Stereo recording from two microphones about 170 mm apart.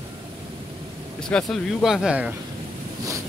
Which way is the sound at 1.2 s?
5° left (ahead or behind).